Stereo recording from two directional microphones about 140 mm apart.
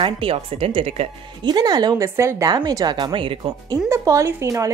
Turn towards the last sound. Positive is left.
turn(degrees=-20)  # may be behind; listen again after turning